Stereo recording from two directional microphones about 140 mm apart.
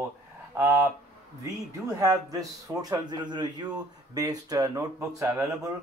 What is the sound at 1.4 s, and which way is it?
Speech, 25° right (ahead or behind).